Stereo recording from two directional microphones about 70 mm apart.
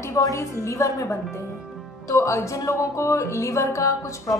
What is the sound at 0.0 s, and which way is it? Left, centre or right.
A woman's voice, left.